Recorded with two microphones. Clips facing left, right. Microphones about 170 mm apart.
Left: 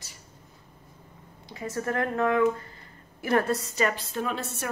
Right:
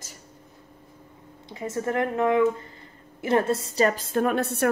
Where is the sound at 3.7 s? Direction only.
40° right (ahead or behind); by 4.6 s 60° right (ahead or behind).